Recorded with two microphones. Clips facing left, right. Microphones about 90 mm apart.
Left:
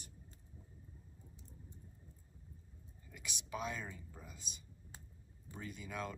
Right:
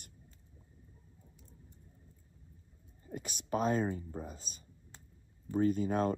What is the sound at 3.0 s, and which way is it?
Speech, 45° right (ahead or behind).